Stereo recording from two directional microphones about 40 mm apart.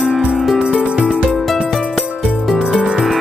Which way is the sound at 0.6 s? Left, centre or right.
Centre.